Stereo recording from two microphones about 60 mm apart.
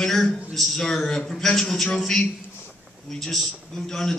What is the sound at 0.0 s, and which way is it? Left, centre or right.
A man's voice, centre.